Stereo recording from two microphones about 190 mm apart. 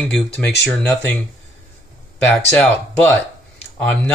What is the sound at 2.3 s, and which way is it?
Speech, 10° left (ahead or behind).